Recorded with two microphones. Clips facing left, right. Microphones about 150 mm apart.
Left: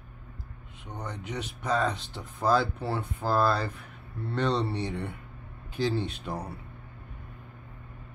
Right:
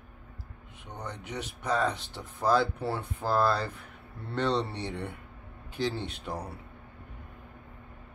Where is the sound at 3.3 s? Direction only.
20° right (ahead or behind).